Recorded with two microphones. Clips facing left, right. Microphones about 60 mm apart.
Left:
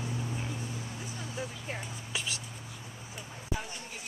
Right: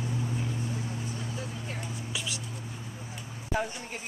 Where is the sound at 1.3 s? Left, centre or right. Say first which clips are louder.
Right 1 dB; left.